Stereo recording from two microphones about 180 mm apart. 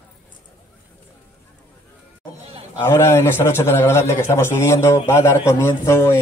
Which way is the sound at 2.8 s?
15° left (ahead or behind).